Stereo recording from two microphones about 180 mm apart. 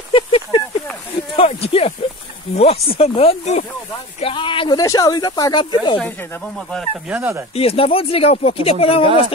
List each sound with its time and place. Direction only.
0.1 s a sound: 30° left (ahead or behind)
2.5 s speech: 35° left (ahead or behind)
5.9 s speech: 5° left (ahead or behind)
7.1 s speech: 10° right (ahead or behind)
7.5 s speech: 30° left (ahead or behind)